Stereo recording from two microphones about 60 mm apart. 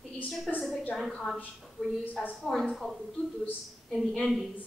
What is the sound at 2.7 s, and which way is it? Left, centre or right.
Speech, centre.